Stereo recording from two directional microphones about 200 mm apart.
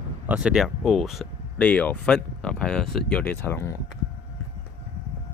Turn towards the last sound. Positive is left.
turn(degrees=10)  # may be behind; listen again after turning